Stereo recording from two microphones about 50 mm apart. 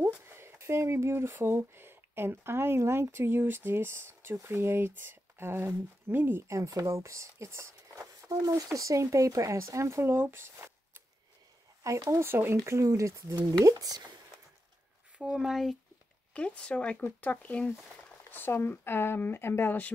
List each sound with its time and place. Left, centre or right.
0.0 s a sound: right
0.7 s speech: right
6.4 s speech: right
10.1 s speech: right
11.8 s speech: right
12.3 s speech: right
12.6 s speech: right
15.1 s speech: centre
16.3 s speech: left
18.3 s speech: left